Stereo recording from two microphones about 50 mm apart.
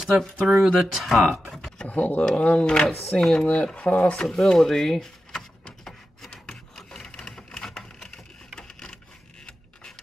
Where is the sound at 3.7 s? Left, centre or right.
Left.